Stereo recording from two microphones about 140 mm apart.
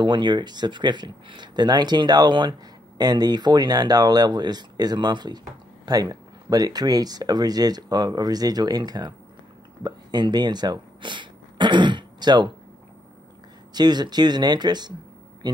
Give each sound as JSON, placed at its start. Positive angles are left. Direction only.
{"t": 0.0, "sound": "speech", "side_deg": -35}
{"t": 13.7, "sound": "speech", "side_deg": -30}